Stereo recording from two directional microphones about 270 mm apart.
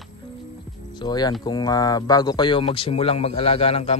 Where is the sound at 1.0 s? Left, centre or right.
Centre.